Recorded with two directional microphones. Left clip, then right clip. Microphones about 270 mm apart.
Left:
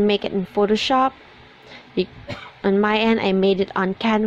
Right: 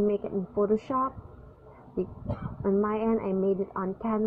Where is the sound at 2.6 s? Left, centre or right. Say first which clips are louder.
Left 9 dB; left.